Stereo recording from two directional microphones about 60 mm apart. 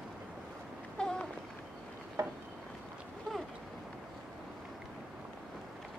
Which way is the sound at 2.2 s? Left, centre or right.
Right.